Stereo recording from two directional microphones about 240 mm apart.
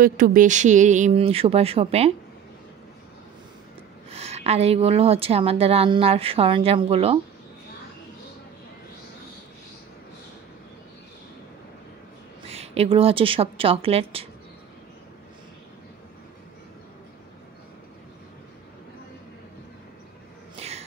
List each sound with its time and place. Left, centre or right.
0.0 s a woman's voice: right
4.1 s a woman's voice: right
12.4 s a woman's voice: right
20.5 s a sound: right